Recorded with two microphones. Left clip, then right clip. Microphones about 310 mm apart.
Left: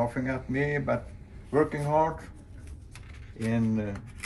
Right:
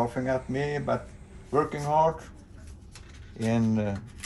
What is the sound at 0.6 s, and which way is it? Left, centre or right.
Speech, centre.